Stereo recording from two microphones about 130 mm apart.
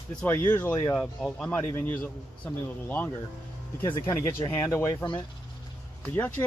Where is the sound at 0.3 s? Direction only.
20° left (ahead or behind).